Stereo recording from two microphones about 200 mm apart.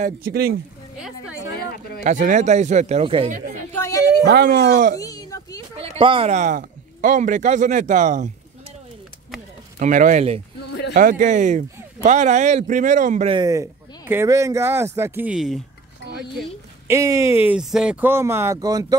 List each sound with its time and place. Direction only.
0.3 s speech: 50° right (ahead or behind)
0.9 s a woman's voice: 5° right (ahead or behind)
2.0 s speech: 40° right (ahead or behind)
3.7 s a sound: 15° left (ahead or behind)
4.2 s speech: 50° right (ahead or behind)
4.9 s a sound: 15° left (ahead or behind)
5.9 s speech: 25° right (ahead or behind)
9.8 s speech: 40° right (ahead or behind)
13.4 s speech: 15° right (ahead or behind)
16.8 s speech: 15° right (ahead or behind)